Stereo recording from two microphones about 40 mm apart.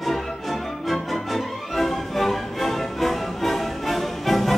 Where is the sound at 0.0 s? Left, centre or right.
Centre.